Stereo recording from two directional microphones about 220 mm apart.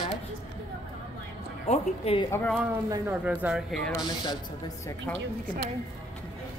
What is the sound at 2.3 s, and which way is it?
Speech, 5° left (ahead or behind).